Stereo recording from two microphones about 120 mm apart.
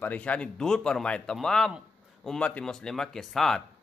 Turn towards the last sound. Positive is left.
turn(degrees=5)  # may be behind; listen again after turning